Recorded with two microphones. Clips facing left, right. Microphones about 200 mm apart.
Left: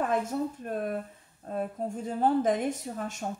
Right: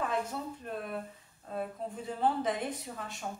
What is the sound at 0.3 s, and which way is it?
Speech, 45° left (ahead or behind).